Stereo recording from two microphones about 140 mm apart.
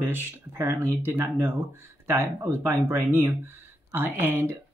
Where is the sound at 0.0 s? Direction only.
15° right (ahead or behind).